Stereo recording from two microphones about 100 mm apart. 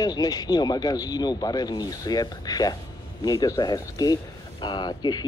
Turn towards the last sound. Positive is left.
turn(degrees=45)  # may be behind; listen again after turning